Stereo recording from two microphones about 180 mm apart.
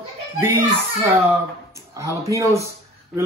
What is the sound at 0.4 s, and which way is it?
Speech, 15° right (ahead or behind).